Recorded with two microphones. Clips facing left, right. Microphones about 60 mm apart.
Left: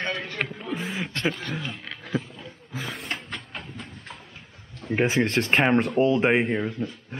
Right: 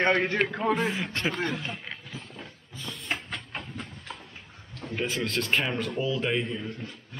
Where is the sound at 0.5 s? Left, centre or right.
Right.